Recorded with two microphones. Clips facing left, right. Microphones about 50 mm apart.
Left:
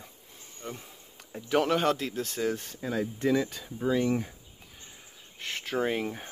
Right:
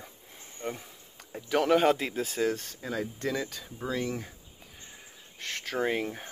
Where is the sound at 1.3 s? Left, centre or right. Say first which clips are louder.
Right 1 dB; centre.